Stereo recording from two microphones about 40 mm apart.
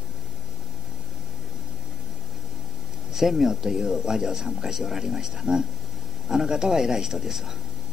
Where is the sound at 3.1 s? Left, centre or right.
Centre.